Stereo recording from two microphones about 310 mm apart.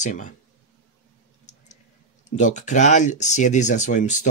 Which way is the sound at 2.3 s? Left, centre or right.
Left.